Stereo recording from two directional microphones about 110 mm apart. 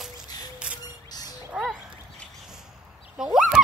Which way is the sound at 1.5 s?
5° right (ahead or behind).